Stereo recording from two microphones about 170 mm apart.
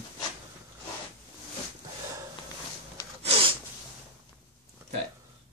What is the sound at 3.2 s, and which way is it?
Snort, 35° right (ahead or behind).